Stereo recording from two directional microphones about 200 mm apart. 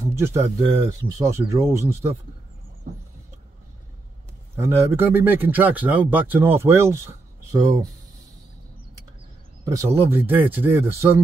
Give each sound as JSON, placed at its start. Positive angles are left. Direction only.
{"t": 0.0, "sound": "a sound", "side_deg": -15}
{"t": 0.7, "sound": "speech", "side_deg": -20}
{"t": 4.6, "sound": "speech", "side_deg": -10}
{"t": 9.7, "sound": "speech", "side_deg": -15}